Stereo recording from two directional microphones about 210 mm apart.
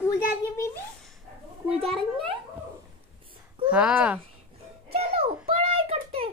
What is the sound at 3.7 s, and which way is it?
Speech, 5° right (ahead or behind).